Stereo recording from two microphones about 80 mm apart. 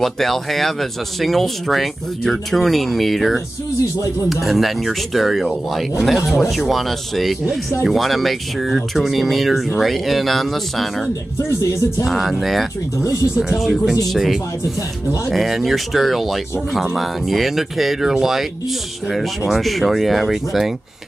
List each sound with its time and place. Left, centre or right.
0.0 s speech: centre
11.4 s speech: left
12.1 s speech: centre